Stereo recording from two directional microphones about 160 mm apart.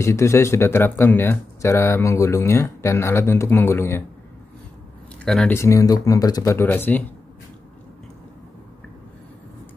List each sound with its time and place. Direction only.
0.0 s speech: 15° left (ahead or behind)
5.2 s speech: 5° left (ahead or behind)
5.6 s speech: 20° left (ahead or behind)